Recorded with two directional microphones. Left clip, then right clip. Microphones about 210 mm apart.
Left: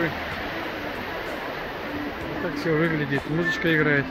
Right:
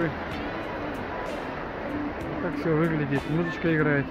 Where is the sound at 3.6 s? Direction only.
10° left (ahead or behind).